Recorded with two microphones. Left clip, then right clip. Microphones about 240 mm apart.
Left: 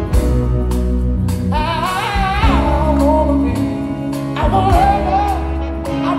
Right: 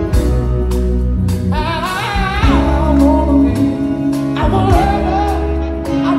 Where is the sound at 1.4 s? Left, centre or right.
Left.